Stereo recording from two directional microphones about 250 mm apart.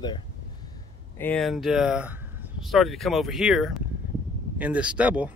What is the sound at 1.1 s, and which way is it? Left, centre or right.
Speech, centre.